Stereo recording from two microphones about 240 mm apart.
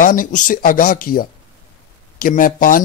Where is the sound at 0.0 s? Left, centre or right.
Left.